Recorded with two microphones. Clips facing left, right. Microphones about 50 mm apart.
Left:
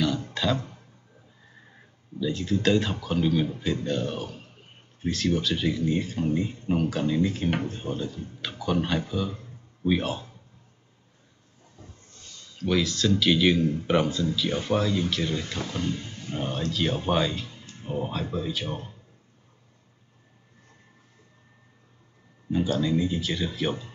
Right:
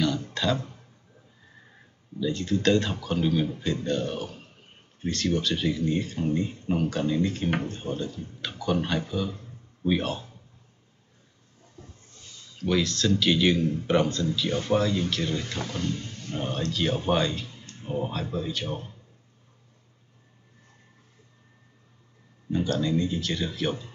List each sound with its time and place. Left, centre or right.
0.3 s a sound: centre
2.1 s speech: centre
12.5 s speech: centre
15.8 s speech: centre
16.3 s speech: centre
22.5 s speech: centre